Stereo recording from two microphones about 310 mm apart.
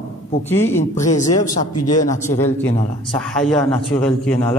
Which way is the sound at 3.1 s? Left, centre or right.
Centre.